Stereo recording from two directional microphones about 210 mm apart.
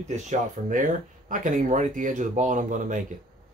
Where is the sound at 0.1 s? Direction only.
40° right (ahead or behind).